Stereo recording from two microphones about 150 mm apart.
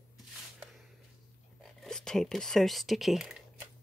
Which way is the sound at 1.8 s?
5° left (ahead or behind).